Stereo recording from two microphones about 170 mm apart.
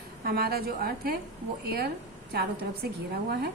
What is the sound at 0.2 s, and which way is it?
Speech, 65° right (ahead or behind).